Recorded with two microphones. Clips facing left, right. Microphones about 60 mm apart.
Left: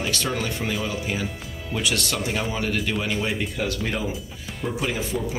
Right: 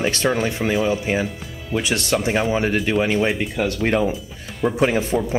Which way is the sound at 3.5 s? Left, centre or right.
Right.